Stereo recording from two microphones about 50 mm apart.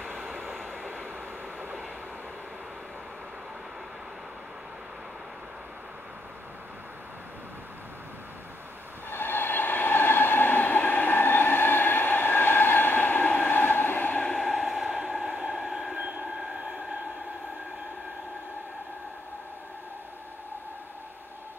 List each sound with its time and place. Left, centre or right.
0.3 s vehicle: centre
9.1 s train: left
14.2 s a sound: centre
14.5 s train: centre